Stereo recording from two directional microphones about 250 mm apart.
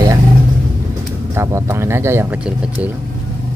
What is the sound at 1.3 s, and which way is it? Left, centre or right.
Speech, centre.